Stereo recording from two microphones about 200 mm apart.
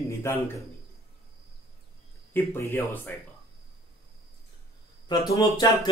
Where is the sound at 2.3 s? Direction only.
10° left (ahead or behind).